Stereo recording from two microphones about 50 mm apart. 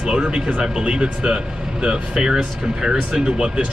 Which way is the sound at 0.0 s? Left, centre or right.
Centre.